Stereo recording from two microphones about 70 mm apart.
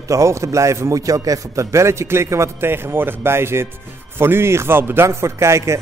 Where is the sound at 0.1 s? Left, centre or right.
Right.